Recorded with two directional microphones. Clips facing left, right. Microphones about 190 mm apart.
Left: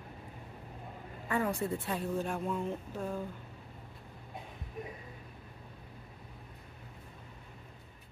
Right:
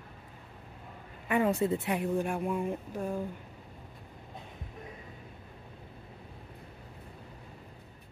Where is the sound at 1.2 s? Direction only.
20° right (ahead or behind).